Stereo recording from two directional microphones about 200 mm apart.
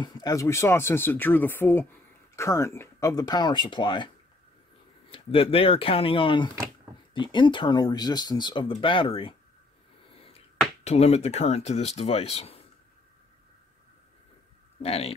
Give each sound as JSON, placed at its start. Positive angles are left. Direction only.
{"t": 0.0, "sound": "speech", "side_deg": 20}
{"t": 5.1, "sound": "speech", "side_deg": 25}
{"t": 10.8, "sound": "speech", "side_deg": 30}
{"t": 14.8, "sound": "speech", "side_deg": 30}